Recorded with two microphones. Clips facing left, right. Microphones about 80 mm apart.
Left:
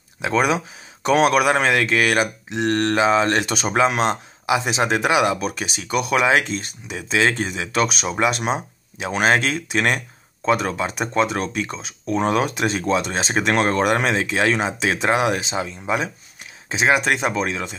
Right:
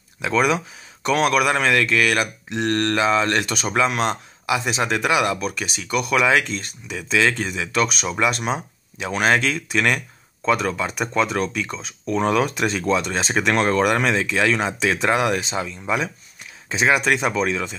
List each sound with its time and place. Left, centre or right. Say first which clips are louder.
0.2 s speech: even; left
12.4 s speech: even; centre